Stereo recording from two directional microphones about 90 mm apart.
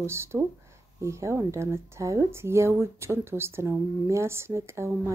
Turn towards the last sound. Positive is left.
turn(degrees=-30)  # may be behind; listen again after turning